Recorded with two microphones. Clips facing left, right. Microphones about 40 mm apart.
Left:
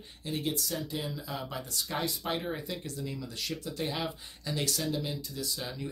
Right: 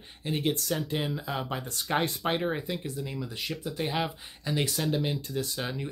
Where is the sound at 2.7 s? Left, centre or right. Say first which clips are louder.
Right 3 dB; right.